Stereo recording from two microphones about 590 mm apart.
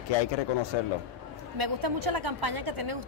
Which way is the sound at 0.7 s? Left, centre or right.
Left.